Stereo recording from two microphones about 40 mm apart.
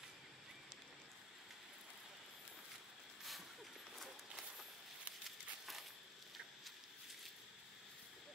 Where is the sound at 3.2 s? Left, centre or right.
Centre.